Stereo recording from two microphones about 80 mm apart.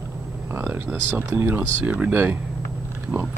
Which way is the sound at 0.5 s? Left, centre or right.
Right.